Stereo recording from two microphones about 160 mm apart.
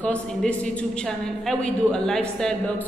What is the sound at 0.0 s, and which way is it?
A woman's voice, 5° left (ahead or behind).